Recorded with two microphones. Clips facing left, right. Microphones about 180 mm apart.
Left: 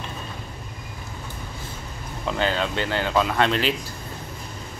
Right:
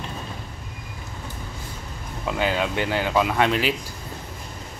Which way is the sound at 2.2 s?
10° right (ahead or behind).